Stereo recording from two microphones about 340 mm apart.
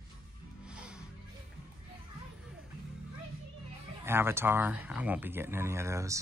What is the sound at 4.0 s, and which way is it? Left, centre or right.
Speech, centre.